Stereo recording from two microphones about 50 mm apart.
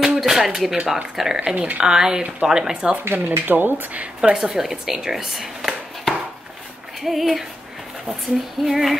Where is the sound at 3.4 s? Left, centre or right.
Right.